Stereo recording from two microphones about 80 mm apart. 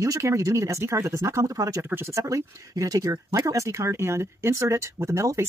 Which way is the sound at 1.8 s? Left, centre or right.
Right.